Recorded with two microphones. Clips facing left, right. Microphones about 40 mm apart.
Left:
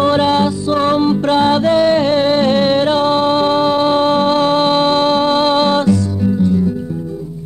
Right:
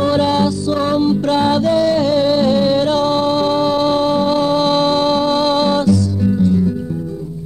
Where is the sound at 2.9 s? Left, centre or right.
Left.